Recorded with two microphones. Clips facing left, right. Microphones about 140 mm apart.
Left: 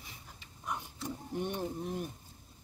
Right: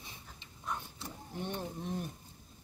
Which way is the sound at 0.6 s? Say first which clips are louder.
Left 2 dB; 15° left (ahead or behind).